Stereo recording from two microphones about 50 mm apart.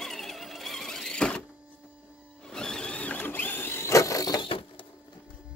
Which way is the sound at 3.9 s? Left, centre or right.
Left.